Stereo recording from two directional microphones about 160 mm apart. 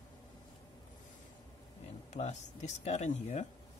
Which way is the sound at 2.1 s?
45° left (ahead or behind).